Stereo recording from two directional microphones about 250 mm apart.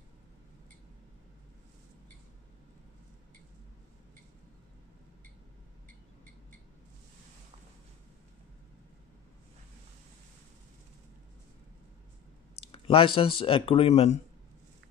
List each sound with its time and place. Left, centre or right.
12.7 s speech: left